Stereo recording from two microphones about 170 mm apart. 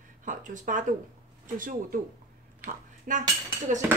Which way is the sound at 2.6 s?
50° right (ahead or behind).